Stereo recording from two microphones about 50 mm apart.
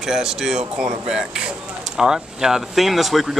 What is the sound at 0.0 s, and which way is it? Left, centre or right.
Speech, centre.